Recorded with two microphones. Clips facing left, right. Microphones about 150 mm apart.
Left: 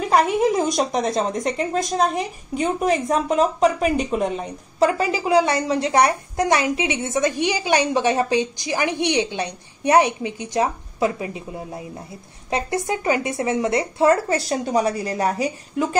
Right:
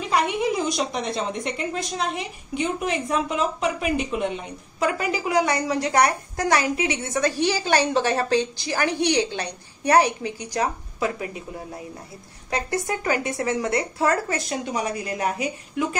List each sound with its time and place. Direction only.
0.0 s a woman's voice: 45° left (ahead or behind)